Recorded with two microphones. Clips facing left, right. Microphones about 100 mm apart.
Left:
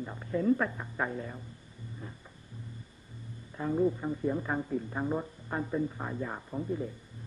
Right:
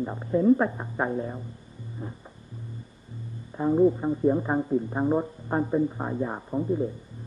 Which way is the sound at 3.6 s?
25° right (ahead or behind).